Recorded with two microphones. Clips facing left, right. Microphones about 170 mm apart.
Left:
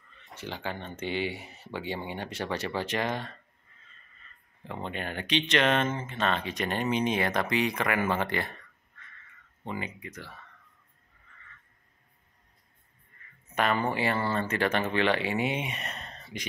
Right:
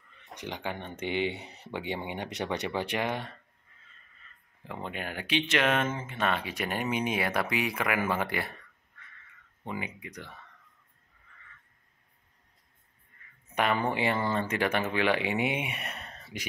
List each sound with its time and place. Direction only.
0.2 s speech: 15° right (ahead or behind)
4.6 s speech: 5° right (ahead or behind)
9.7 s speech: 10° right (ahead or behind)
13.6 s speech: 15° right (ahead or behind)